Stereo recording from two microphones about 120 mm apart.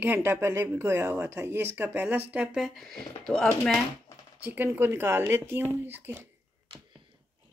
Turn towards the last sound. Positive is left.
turn(degrees=-15)  # may be behind; listen again after turning